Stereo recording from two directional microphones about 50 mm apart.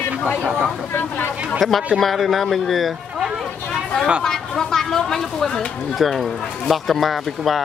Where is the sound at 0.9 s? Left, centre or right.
Left.